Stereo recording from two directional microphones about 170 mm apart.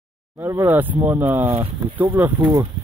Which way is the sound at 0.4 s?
15° right (ahead or behind).